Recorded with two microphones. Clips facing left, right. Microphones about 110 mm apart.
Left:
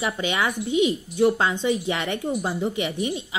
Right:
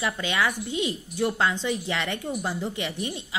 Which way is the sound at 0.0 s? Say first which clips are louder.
Left 2 dB; 20° left (ahead or behind).